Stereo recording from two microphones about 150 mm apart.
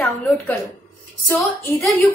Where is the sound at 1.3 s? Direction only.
20° left (ahead or behind).